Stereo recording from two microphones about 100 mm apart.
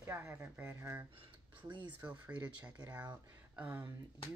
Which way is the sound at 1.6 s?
50° right (ahead or behind).